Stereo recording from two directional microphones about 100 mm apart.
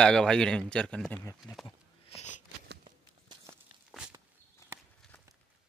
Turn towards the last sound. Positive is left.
turn(degrees=-25)  # may be behind; listen again after turning